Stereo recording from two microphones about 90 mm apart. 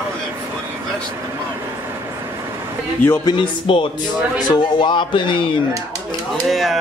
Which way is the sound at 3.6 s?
65° left (ahead or behind).